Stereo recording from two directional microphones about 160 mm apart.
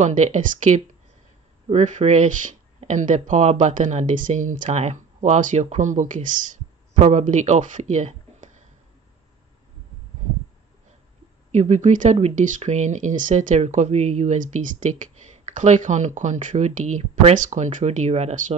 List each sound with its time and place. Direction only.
0.0 s speech: 50° right (ahead or behind)
11.5 s speech: 45° right (ahead or behind)